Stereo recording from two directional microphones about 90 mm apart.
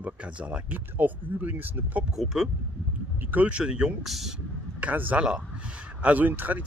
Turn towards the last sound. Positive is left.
turn(degrees=-20)  # may be behind; listen again after turning